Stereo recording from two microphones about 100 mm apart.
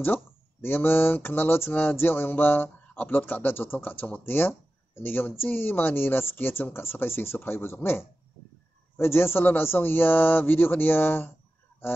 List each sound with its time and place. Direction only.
0.0 s speech: 20° left (ahead or behind)